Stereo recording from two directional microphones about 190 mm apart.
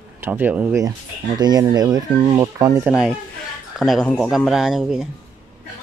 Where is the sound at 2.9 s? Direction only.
5° right (ahead or behind).